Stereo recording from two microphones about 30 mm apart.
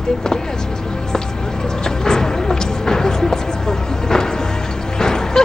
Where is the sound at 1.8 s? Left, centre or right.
Left.